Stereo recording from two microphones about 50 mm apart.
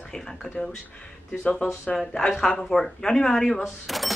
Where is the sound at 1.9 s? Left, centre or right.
Centre.